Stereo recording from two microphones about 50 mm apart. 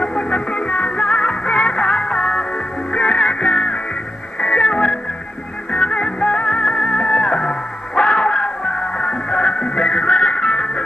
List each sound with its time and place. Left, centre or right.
0.0 s music: centre